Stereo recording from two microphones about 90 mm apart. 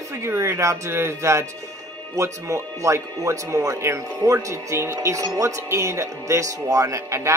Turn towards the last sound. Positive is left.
turn(degrees=-35)  # may be behind; listen again after turning